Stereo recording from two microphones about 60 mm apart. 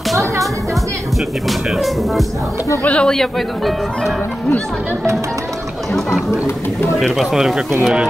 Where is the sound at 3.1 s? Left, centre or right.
Centre.